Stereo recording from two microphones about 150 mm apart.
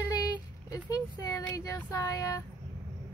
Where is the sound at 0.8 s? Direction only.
25° left (ahead or behind).